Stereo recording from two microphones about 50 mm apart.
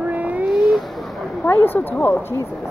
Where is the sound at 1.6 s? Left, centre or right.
Left.